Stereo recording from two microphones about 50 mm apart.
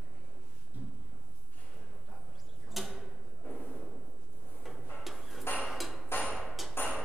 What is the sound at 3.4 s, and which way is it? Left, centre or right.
Drawer open or close, left.